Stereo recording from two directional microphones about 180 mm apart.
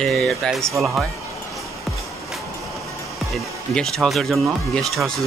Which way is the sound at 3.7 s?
5° left (ahead or behind).